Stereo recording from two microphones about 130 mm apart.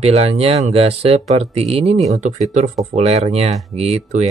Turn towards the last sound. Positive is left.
turn(degrees=-55)  # may be behind; listen again after turning